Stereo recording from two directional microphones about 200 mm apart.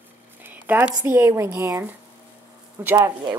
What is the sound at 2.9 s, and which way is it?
Speech, 20° right (ahead or behind).